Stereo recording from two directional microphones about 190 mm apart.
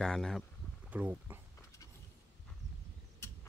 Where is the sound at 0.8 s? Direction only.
10° right (ahead or behind).